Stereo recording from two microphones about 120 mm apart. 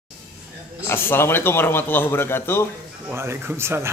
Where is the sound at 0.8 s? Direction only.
20° left (ahead or behind).